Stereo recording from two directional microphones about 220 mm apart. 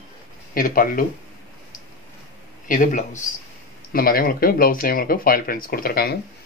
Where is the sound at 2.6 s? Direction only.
35° left (ahead or behind).